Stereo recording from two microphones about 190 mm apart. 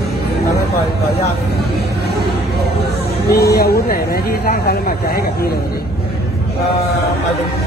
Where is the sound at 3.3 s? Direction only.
55° left (ahead or behind).